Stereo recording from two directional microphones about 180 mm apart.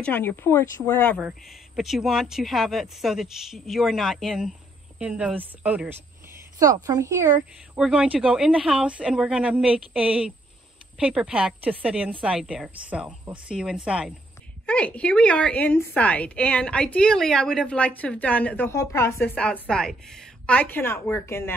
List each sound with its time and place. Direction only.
0.0 s a woman's voice: 10° left (ahead or behind)
1.8 s speech: centre (ahead or behind)
6.6 s speech: 20° right (ahead or behind)
7.7 s speech: 5° right (ahead or behind)
14.7 s a woman's voice: 5° left (ahead or behind)